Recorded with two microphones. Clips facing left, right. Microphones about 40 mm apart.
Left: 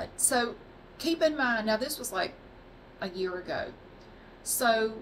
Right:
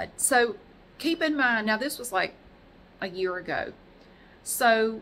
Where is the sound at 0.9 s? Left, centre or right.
Right.